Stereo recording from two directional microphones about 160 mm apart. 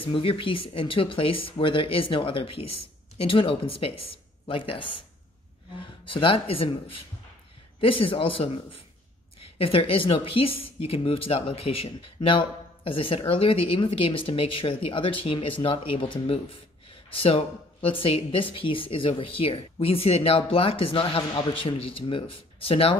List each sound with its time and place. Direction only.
0.0 s speech: 35° left (ahead or behind)
6.0 s speech: 35° left (ahead or behind)